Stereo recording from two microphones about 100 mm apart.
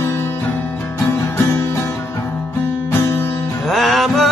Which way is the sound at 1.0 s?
25° left (ahead or behind).